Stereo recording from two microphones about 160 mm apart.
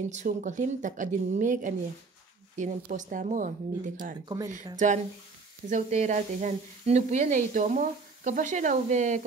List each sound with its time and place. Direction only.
0.1 s speech: 50° right (ahead or behind)